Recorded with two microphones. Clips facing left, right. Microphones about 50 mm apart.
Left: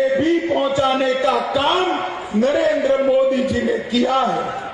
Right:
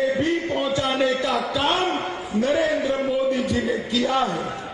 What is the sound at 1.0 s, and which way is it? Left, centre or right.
A man's voice, centre.